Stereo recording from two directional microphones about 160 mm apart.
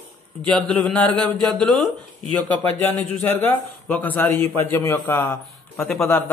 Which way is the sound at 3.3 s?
10° left (ahead or behind).